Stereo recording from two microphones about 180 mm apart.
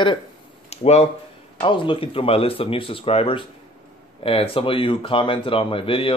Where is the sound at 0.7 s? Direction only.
35° left (ahead or behind).